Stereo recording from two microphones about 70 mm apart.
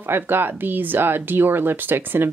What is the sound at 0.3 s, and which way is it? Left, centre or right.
Speech, right.